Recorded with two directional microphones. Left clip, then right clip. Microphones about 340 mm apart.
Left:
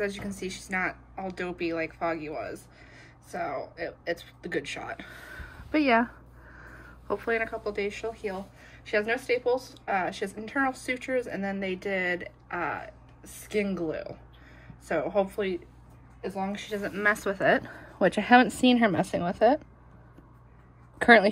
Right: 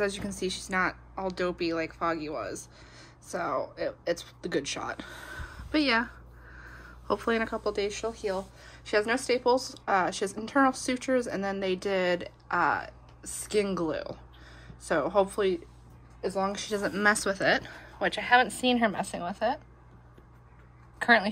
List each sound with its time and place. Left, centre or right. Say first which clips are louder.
0.0 s speech: right 2 dB; centre
18.0 s speech: left 3 dB; centre